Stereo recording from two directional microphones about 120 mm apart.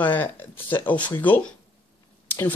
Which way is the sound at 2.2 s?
15° left (ahead or behind).